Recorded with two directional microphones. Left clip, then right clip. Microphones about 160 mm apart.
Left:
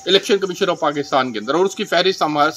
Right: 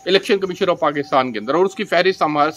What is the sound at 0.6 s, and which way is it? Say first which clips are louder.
Speech: right 1 dB; 5° right (ahead or behind).